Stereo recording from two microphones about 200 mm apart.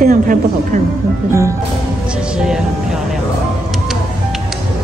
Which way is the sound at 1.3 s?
15° right (ahead or behind).